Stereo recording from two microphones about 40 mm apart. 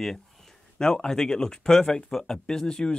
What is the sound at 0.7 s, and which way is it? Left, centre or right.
Speech, centre.